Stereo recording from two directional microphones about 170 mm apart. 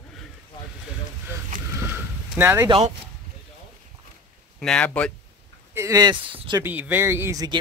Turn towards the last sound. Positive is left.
turn(degrees=-20)  # may be behind; listen again after turning